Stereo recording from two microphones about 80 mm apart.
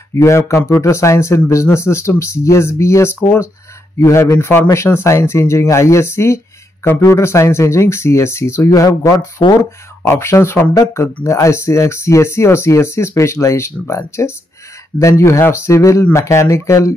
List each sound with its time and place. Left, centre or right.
0.1 s speech: left
8.6 s speech: left
9.4 s speech: left
10.0 s speech: left